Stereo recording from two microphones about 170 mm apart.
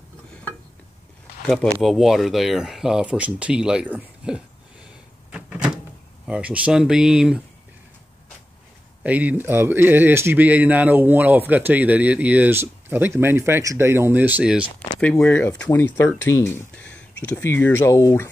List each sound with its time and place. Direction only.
1.5 s speech: centre (ahead or behind)
5.3 s door: 5° right (ahead or behind)
6.2 s speech: 5° right (ahead or behind)
9.0 s speech: 10° right (ahead or behind)
15.0 s speech: 5° left (ahead or behind)
16.8 s a sound: 90° left
17.2 s speech: 10° left (ahead or behind)